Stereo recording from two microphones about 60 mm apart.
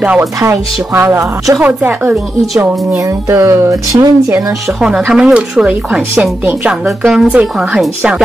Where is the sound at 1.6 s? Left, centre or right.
Right.